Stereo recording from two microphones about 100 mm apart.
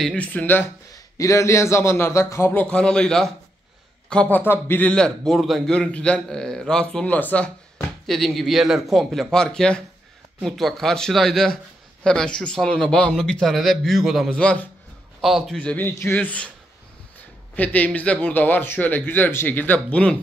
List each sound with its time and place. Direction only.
0.0 s a man's voice: 10° left (ahead or behind)
0.9 s a man's voice: 30° left (ahead or behind)
2.6 s a man's voice: 10° left (ahead or behind)
4.4 s a man's voice: 20° left (ahead or behind)
8.1 s a man's voice: centre (ahead or behind)
14.3 s a man's voice: 10° left (ahead or behind)
17.6 s a man's voice: 15° left (ahead or behind)